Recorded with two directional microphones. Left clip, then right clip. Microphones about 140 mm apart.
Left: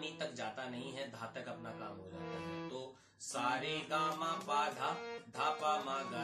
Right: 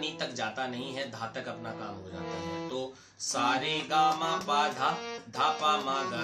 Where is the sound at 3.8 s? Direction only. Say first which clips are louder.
Right 12 dB; 20° right (ahead or behind).